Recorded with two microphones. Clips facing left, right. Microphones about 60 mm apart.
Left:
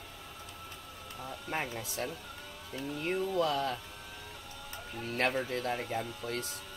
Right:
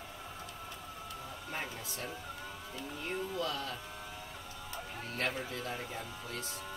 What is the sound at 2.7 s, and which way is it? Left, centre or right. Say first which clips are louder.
Speech: left 6 dB; left.